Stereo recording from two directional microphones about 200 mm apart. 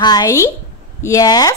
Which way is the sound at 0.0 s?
20° left (ahead or behind).